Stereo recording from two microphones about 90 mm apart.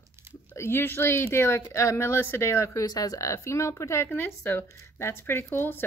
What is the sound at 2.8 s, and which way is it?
Speech, 45° left (ahead or behind).